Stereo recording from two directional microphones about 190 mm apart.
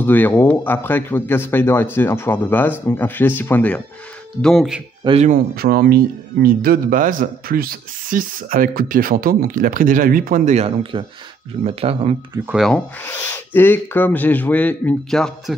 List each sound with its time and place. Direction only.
0.0 s speech: 10° left (ahead or behind)
5.0 s speech: 30° right (ahead or behind)
5.3 s speech: 55° right (ahead or behind); by 12.2 s 30° right (ahead or behind)
12.4 s speech: centre (ahead or behind)